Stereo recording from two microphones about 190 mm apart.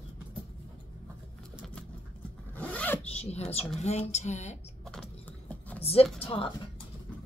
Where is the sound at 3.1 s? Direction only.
35° left (ahead or behind).